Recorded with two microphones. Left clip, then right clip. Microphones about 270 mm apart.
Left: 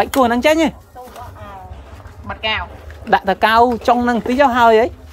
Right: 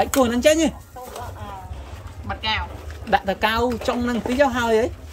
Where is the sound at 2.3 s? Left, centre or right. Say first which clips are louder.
Left 4 dB; centre.